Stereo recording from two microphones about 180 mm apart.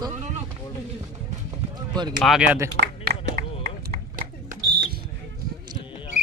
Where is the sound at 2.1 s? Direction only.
5° right (ahead or behind).